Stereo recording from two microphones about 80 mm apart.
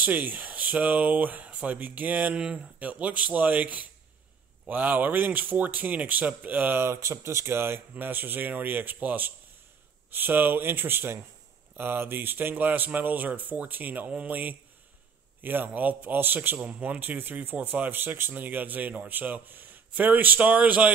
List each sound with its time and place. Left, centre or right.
0.0 s a man's voice: right